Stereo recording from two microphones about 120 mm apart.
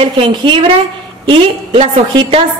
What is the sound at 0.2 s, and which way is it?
A woman's voice, 40° right (ahead or behind).